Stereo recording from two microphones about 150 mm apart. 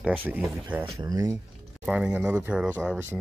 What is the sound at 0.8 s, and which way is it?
Speech, 25° right (ahead or behind).